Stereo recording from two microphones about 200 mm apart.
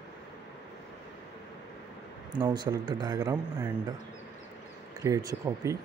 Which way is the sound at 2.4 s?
20° right (ahead or behind).